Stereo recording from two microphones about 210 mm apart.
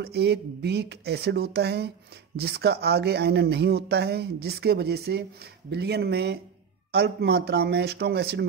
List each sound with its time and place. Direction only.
0.0 s speech: 50° right (ahead or behind)